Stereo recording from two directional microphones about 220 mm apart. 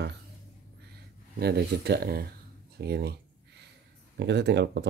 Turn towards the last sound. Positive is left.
turn(degrees=-50)  # may be behind; listen again after turning